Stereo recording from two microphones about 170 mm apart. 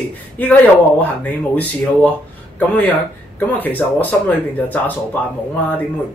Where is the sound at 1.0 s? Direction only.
10° left (ahead or behind).